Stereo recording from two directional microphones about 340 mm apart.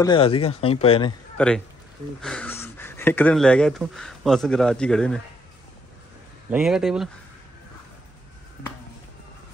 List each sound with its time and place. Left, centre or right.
0.0 s speech: centre
1.4 s speech: centre
6.5 s speech: centre